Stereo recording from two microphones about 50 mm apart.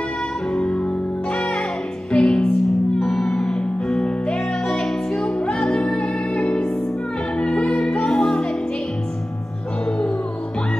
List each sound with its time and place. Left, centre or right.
0.6 s music: centre
2.1 s music: centre